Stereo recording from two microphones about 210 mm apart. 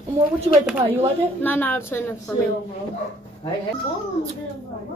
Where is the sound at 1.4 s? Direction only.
10° left (ahead or behind).